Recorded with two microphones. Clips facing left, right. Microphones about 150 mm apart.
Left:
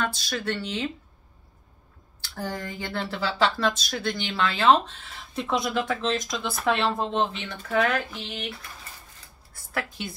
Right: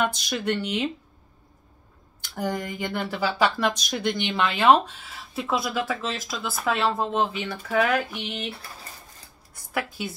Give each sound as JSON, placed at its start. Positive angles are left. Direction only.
{"t": 0.0, "sound": "speech", "side_deg": -15}
{"t": 2.2, "sound": "speech", "side_deg": -15}
{"t": 9.5, "sound": "speech", "side_deg": -10}